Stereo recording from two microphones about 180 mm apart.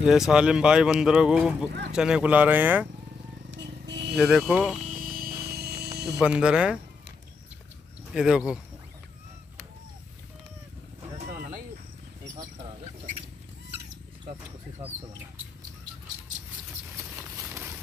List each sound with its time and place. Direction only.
0.0 s speech: 5° right (ahead or behind)
3.5 s vehicle: 75° right (ahead or behind)
4.2 s speech: centre (ahead or behind)
5.0 s a sound: 55° right (ahead or behind)
6.1 s speech: 5° right (ahead or behind)
8.1 s speech: 5° right (ahead or behind)